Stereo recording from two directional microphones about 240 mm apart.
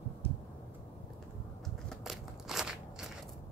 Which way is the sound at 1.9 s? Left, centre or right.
Centre.